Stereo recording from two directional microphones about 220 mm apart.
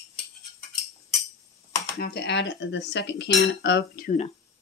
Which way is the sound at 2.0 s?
45° left (ahead or behind).